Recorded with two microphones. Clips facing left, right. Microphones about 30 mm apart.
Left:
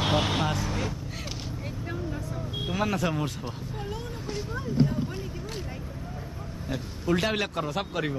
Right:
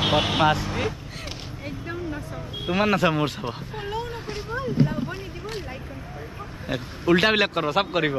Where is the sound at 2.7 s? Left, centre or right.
Right.